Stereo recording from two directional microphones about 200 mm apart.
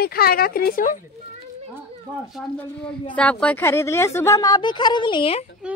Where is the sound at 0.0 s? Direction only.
50° left (ahead or behind).